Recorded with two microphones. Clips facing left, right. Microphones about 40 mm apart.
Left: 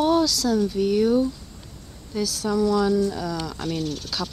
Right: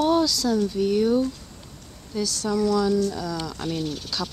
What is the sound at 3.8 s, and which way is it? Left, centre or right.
Speech, centre.